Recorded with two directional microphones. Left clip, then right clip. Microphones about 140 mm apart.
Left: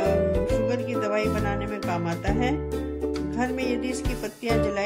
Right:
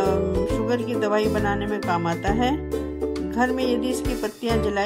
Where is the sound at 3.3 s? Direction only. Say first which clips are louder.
Right 8 dB; 25° right (ahead or behind).